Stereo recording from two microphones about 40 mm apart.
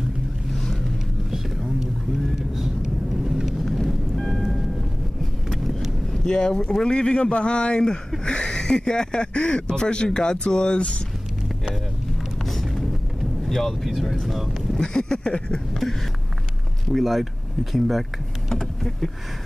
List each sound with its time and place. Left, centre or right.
1.3 s whispering: centre
2.3 s vehicle: centre
3.6 s vehicle: centre
4.2 s a sound: centre
6.2 s speech: centre
12.4 s music: centre
13.5 s speech: centre
14.8 s speech: centre
15.7 s speech: centre
18.5 s power windows: centre